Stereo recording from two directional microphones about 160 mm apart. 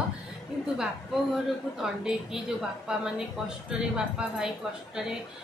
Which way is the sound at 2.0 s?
5° right (ahead or behind).